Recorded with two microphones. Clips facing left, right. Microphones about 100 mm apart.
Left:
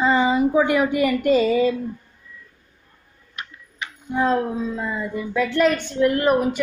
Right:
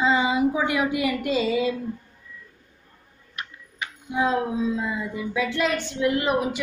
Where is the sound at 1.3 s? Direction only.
50° left (ahead or behind).